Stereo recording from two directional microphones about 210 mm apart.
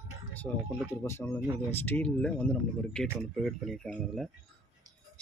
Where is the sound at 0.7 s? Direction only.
5° right (ahead or behind).